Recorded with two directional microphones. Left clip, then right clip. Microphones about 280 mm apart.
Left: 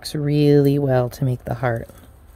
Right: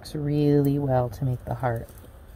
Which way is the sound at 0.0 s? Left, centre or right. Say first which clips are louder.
Left 6 dB; left.